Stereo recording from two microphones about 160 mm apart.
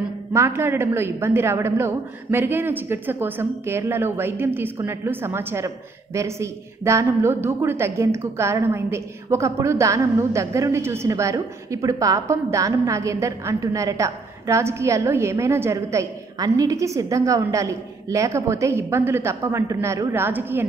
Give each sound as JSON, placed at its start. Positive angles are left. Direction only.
{"t": 0.3, "sound": "a woman's voice", "side_deg": -15}